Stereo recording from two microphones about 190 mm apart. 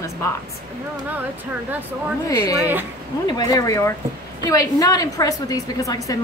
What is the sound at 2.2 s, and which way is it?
A woman's voice, 20° left (ahead or behind).